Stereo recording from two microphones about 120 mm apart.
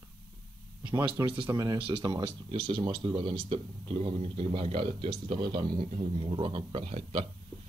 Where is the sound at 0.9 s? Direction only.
20° right (ahead or behind).